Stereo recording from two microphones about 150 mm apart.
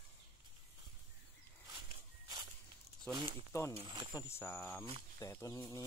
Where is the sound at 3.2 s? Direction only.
35° right (ahead or behind).